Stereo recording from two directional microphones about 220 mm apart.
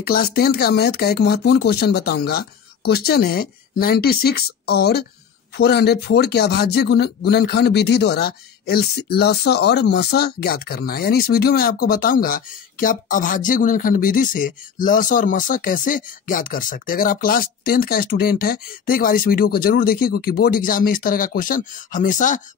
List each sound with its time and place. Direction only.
0.0 s speech: 45° left (ahead or behind)